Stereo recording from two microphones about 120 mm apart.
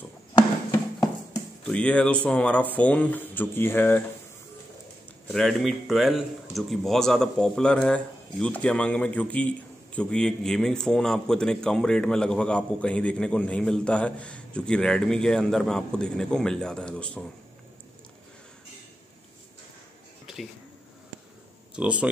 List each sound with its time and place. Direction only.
1.6 s a man's voice: 10° left (ahead or behind)
5.3 s a man's voice: centre (ahead or behind)
20.3 s a sound: centre (ahead or behind)
21.7 s speech: 10° right (ahead or behind)